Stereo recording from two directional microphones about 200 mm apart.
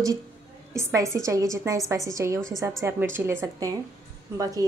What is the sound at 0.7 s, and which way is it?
A woman's voice, 15° right (ahead or behind).